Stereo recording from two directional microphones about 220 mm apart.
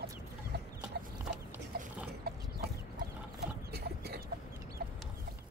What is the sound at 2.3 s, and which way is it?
Chicken, 45° right (ahead or behind).